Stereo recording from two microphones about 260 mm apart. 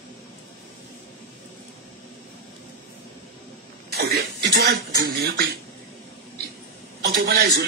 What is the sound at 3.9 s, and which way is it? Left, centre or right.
Speech, right.